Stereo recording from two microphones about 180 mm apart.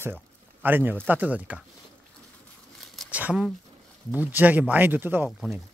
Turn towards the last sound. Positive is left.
turn(degrees=-10)  # may be behind; listen again after turning